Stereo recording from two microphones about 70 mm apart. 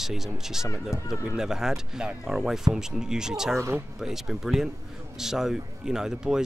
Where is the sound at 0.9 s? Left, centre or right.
Left.